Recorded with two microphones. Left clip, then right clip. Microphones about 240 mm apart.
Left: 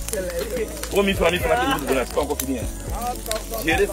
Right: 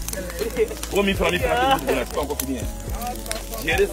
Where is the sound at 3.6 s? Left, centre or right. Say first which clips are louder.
Even; centre.